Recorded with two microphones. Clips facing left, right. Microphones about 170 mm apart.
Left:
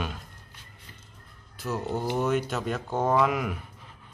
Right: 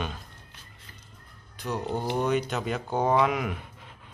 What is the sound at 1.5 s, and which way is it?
Speech, 5° left (ahead or behind).